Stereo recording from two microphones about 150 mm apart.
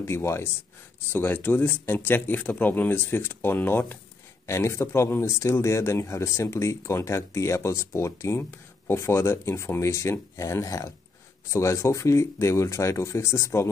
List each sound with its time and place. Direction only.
0.0 s speech: 15° left (ahead or behind)